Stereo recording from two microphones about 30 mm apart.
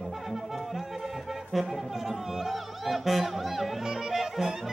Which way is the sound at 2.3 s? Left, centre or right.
Centre.